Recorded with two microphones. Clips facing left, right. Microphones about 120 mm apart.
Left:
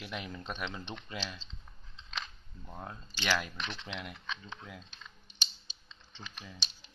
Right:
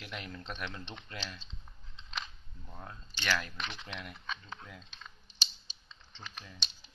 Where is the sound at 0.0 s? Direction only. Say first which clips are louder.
Left 3 dB; 5° left (ahead or behind).